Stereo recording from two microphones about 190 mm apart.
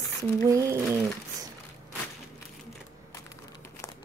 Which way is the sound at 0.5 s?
15° right (ahead or behind).